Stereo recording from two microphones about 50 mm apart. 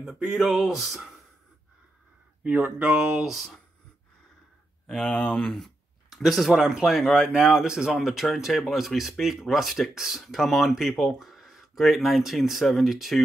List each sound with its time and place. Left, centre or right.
0.0 s speech: centre
0.4 s speech: centre
2.8 s speech: right
3.2 s speech: centre
4.8 s speech: centre
5.6 s speech: centre